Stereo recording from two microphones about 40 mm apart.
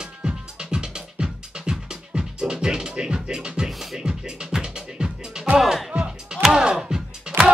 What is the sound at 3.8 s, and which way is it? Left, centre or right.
Music, centre.